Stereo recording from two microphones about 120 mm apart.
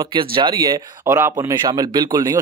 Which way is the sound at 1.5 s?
35° right (ahead or behind).